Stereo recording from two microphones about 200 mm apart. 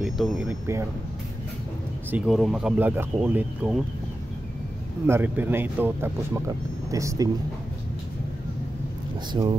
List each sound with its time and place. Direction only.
0.0 s speech: centre (ahead or behind)
2.0 s speech: 5° right (ahead or behind)
5.0 s a man's voice: 10° right (ahead or behind)
9.3 s speech: 20° right (ahead or behind)